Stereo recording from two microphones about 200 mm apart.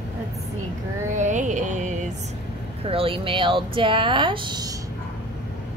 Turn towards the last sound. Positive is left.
turn(degrees=-20)  # may be behind; listen again after turning